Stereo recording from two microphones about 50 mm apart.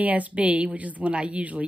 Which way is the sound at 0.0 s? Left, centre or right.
Right.